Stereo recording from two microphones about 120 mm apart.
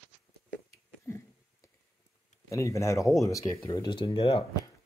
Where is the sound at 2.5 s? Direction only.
25° left (ahead or behind).